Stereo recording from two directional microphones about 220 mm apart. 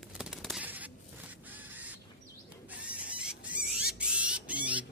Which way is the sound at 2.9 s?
5° right (ahead or behind).